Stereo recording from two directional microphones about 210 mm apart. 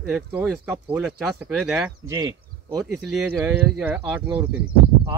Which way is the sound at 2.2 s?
20° right (ahead or behind).